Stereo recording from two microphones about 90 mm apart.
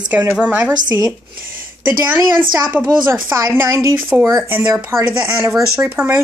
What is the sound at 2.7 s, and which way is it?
A woman's voice, 20° right (ahead or behind).